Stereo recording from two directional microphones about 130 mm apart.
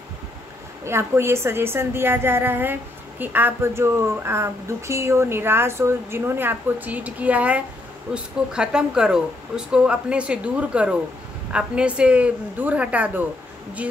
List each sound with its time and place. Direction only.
0.8 s a woman's voice: 20° right (ahead or behind)